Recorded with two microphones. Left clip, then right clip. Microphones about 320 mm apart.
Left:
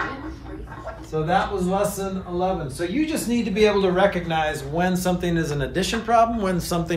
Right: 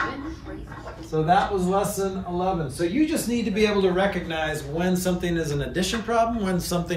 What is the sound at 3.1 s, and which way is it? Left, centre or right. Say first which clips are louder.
A man's voice: left 1 dB; centre.